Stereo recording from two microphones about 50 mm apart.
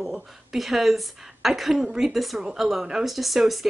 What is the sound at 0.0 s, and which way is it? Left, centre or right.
Speech, centre.